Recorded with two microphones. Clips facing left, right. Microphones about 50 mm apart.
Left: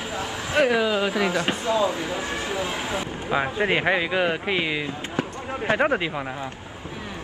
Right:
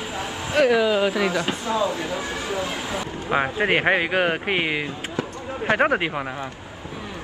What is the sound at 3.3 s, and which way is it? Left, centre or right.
Speech, right.